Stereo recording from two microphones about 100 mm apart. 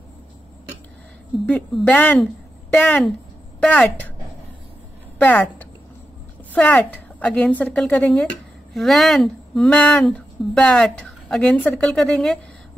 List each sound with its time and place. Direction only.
1.4 s a woman's voice: 15° left (ahead or behind)
5.2 s a woman's voice: 15° left (ahead or behind)